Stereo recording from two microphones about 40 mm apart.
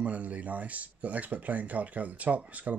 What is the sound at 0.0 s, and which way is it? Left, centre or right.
Speech, right.